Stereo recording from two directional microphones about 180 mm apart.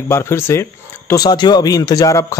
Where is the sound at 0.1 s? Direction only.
15° left (ahead or behind).